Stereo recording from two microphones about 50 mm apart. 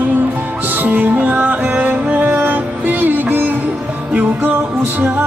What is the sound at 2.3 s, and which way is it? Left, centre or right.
Music, right.